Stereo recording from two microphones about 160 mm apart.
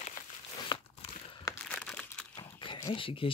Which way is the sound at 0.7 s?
25° left (ahead or behind).